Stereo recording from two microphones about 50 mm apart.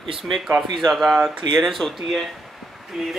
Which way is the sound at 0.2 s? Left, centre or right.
Centre.